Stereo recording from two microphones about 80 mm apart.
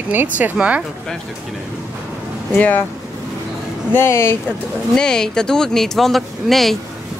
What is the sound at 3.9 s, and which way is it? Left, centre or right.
Speech, left.